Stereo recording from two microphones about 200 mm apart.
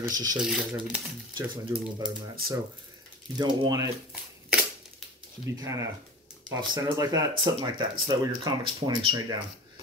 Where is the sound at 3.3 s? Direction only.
20° right (ahead or behind).